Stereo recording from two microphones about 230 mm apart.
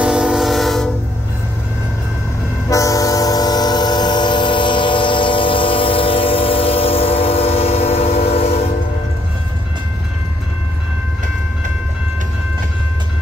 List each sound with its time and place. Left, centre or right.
0.0 s train: centre
2.7 s train: centre